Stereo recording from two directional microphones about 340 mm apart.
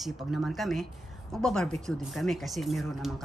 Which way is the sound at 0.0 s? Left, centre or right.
Centre.